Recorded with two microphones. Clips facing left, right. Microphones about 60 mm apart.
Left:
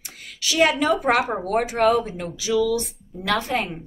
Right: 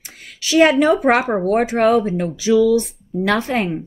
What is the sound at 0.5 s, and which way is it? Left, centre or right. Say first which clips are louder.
A woman's voice: right 6 dB; right.